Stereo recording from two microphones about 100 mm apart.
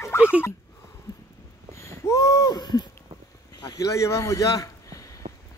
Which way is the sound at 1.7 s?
30° left (ahead or behind).